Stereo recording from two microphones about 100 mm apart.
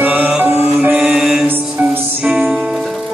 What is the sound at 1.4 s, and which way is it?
Music, 15° right (ahead or behind).